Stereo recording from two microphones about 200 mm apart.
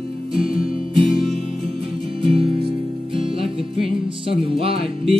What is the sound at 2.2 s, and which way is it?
Music, 25° right (ahead or behind).